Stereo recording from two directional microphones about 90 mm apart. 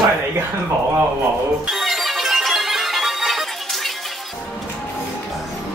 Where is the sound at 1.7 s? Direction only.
Centre (ahead or behind).